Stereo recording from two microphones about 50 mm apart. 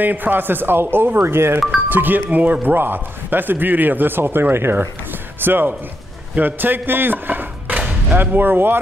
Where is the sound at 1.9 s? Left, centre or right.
Right.